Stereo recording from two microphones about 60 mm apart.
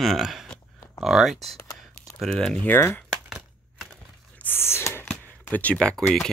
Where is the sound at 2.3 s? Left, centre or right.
Centre.